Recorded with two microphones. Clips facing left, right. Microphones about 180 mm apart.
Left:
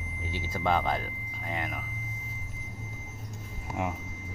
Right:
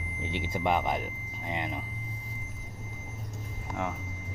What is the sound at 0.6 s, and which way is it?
Speech, 15° right (ahead or behind).